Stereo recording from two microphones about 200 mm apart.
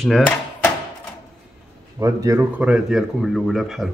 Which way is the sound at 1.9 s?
15° right (ahead or behind).